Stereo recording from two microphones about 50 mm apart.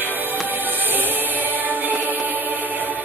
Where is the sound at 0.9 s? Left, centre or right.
Right.